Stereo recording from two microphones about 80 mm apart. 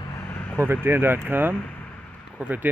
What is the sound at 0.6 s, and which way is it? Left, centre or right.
Speech, right.